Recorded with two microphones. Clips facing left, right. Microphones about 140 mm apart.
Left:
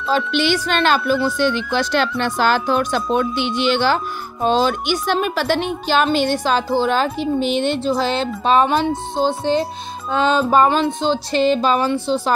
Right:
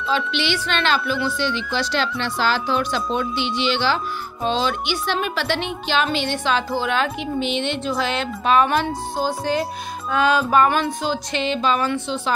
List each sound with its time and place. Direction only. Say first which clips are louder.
0.1 s a woman's voice: left 5 dB; 45° left (ahead or behind); by 11.4 s 25° left (ahead or behind)
11.4 s a woman's voice: left 4 dB; 40° left (ahead or behind)